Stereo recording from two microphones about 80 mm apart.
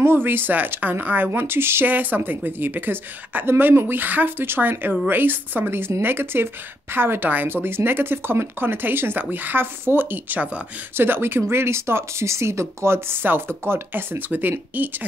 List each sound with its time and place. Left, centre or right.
0.0 s speech: right